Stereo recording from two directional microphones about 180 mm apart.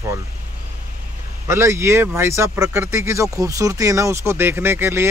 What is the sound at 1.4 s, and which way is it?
Speech, 15° right (ahead or behind).